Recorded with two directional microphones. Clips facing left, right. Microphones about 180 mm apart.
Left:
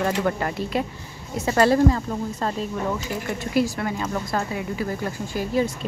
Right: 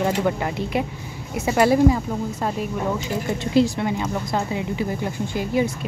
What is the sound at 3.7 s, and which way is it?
Speech, 15° right (ahead or behind).